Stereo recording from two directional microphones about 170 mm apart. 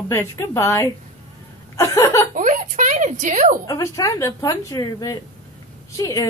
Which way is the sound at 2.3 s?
50° right (ahead or behind).